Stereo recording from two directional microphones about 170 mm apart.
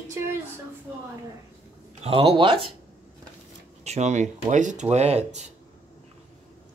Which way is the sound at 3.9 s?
45° right (ahead or behind).